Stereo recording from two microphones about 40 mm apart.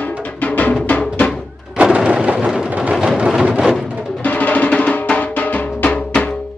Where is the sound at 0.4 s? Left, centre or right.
Left.